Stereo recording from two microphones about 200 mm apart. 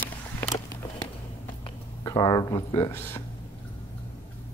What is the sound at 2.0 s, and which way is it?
Speech, 20° left (ahead or behind).